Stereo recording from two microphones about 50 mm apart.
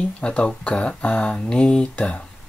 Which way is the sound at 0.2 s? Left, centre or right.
Left.